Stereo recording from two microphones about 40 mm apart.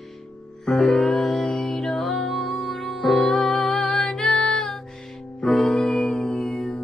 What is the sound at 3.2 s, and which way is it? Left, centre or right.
Music, left.